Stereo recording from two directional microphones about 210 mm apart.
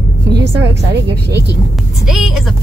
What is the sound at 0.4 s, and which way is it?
A woman's voice, 55° right (ahead or behind).